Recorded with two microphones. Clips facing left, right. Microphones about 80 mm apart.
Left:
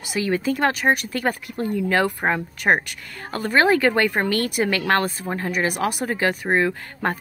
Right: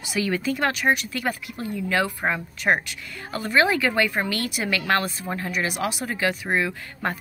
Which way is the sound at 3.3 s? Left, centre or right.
Left.